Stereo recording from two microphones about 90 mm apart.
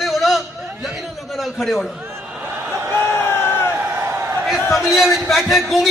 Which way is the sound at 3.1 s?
25° left (ahead or behind).